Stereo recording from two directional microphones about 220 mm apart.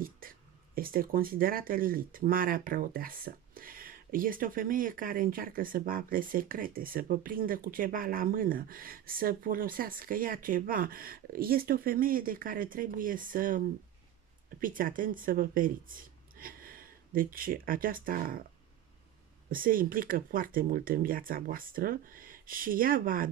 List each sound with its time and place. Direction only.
0.2 s a sound: 40° right (ahead or behind)
0.7 s speech: 40° right (ahead or behind)
14.6 s speech: 40° right (ahead or behind)
19.5 s speech: 40° right (ahead or behind)